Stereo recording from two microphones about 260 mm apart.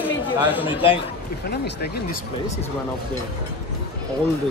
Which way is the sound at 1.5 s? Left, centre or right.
Left.